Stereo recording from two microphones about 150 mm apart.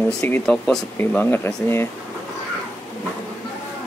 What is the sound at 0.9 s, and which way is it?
Speech, 15° left (ahead or behind).